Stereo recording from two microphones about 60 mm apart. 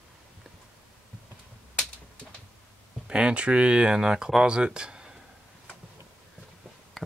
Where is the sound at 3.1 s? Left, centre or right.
Centre.